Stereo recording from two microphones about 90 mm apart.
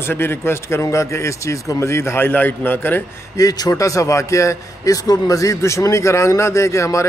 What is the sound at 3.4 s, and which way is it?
Speech, 45° left (ahead or behind).